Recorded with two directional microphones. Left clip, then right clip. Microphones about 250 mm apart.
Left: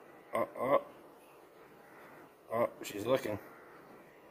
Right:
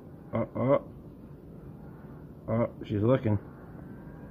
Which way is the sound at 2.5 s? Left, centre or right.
Centre.